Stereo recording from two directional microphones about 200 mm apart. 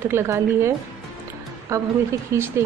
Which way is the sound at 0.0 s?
10° right (ahead or behind).